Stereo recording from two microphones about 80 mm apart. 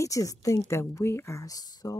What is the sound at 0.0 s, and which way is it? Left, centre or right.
A woman's voice, left.